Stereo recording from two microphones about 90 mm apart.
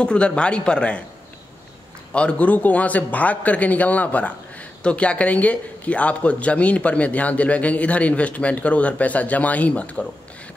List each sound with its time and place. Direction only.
0.0 s a man's voice: 10° left (ahead or behind)
2.1 s a man's voice: 15° left (ahead or behind)